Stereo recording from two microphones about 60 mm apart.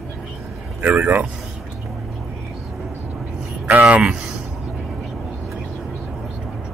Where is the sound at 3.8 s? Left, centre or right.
Centre.